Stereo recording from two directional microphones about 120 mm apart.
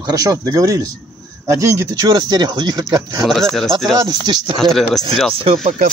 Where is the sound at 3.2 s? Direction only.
Centre (ahead or behind).